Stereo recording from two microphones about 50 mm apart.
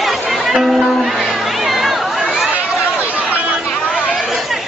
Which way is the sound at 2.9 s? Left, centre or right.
Right.